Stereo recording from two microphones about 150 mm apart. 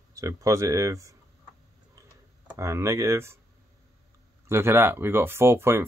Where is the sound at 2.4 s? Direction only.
20° right (ahead or behind).